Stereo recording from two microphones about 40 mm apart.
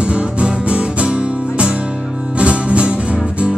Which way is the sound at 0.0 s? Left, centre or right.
Right.